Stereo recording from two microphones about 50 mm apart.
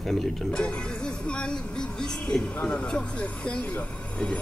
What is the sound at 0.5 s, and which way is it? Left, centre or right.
Speech, centre.